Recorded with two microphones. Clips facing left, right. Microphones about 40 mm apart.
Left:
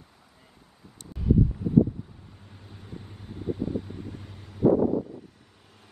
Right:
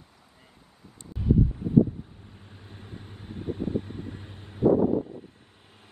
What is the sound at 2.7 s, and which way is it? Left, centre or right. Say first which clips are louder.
Vehicle: left 1 dB; right.